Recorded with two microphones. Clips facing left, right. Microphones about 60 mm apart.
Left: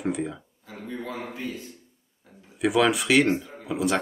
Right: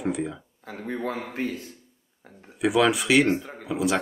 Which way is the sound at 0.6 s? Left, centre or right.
Right.